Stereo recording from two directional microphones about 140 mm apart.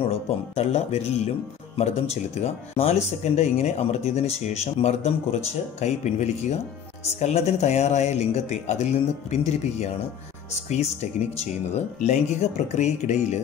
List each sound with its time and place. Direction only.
0.0 s speech: 50° left (ahead or behind)
12.1 s speech: 55° left (ahead or behind)